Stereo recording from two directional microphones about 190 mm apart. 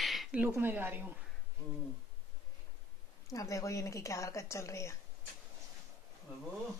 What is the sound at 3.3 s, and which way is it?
A woman's voice, 15° left (ahead or behind).